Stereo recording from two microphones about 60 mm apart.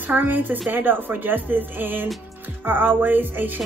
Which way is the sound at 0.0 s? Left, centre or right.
Right.